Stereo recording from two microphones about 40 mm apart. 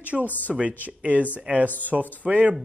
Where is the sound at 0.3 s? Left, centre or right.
Left.